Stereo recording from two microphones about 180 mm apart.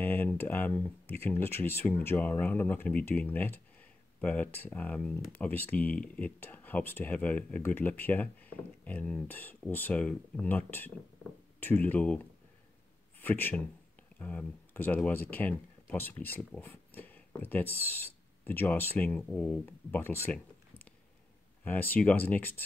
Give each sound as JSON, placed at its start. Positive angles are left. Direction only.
{"t": 0.0, "sound": "speech", "side_deg": 10}
{"t": 13.2, "sound": "speech", "side_deg": 10}
{"t": 21.6, "sound": "speech", "side_deg": 10}